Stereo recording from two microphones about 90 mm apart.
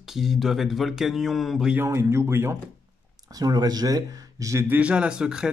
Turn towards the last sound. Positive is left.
turn(degrees=-10)  # may be behind; listen again after turning